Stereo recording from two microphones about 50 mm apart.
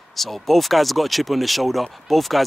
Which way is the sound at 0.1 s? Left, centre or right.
Centre.